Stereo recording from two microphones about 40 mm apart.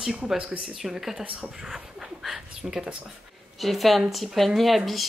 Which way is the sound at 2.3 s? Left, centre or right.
Centre.